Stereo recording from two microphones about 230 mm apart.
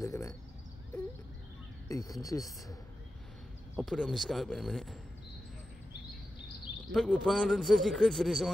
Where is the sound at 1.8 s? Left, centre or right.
Centre.